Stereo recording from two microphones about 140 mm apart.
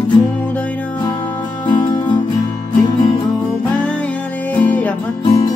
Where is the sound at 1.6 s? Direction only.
30° left (ahead or behind).